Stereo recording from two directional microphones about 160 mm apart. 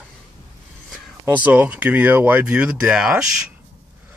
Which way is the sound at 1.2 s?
10° right (ahead or behind).